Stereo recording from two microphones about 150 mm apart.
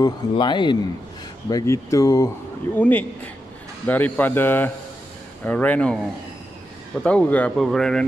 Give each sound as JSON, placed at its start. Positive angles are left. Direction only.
{"t": 0.0, "sound": "speech", "side_deg": 30}
{"t": 2.7, "sound": "speech", "side_deg": 10}
{"t": 7.0, "sound": "speech", "side_deg": 5}